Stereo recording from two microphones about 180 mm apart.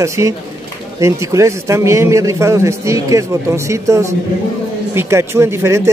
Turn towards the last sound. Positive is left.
turn(degrees=-15)  # may be behind; listen again after turning